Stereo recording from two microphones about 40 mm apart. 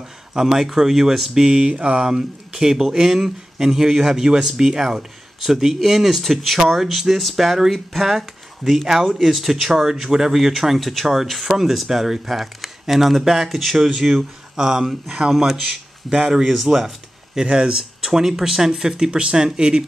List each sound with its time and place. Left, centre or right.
0.3 s speech: centre
1.6 s mantra: right
2.0 s speech: centre
13.8 s speech: centre
17.4 s mantra: right
18.0 s speech: centre